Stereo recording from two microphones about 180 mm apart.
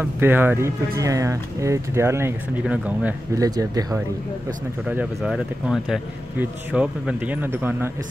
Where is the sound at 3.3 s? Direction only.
20° right (ahead or behind).